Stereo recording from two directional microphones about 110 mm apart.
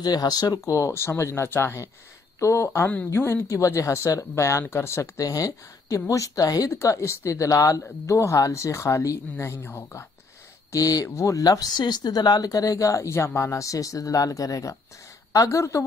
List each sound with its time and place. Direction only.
0.0 s speech: 40° left (ahead or behind); by 10.0 s 20° left (ahead or behind)
10.7 s speech: 35° left (ahead or behind)